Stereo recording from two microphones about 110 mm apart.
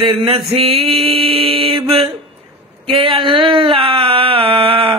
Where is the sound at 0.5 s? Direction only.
60° right (ahead or behind).